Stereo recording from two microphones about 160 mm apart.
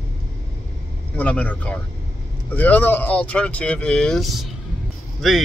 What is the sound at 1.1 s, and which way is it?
Speech, 10° left (ahead or behind).